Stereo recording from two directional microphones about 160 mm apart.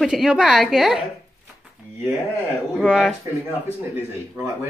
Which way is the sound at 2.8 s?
Centre (ahead or behind).